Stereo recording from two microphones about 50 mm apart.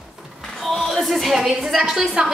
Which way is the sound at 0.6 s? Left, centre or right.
Centre.